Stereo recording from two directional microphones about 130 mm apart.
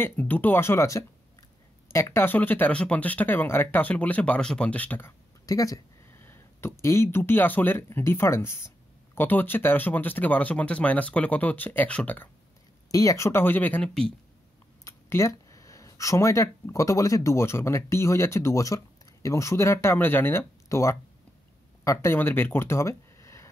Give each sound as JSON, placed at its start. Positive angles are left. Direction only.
{"t": 0.0, "sound": "speech", "side_deg": 15}
{"t": 5.5, "sound": "speech", "side_deg": 25}
{"t": 12.9, "sound": "speech", "side_deg": 25}
{"t": 14.9, "sound": "speech", "side_deg": 20}